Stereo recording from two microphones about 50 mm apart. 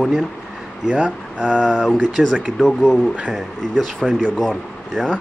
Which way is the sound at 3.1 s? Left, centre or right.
Centre.